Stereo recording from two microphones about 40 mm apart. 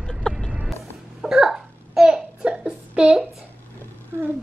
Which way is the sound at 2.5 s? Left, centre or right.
Right.